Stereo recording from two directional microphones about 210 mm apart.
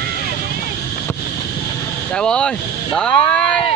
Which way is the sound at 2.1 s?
5° left (ahead or behind).